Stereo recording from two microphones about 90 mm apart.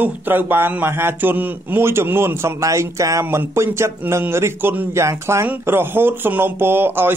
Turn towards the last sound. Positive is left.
turn(degrees=-25)  # may be behind; listen again after turning